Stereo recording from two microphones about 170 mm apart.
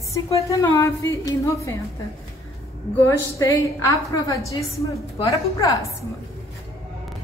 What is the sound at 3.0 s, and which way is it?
A woman's voice, 20° left (ahead or behind).